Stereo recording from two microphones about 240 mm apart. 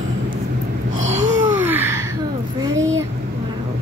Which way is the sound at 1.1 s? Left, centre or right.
Right.